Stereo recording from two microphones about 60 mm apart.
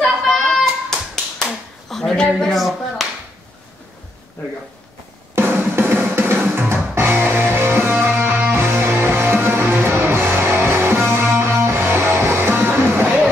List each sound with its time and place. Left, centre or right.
0.0 s hands: centre
3.0 s clapping: centre
5.3 s drum: right
8.5 s music: right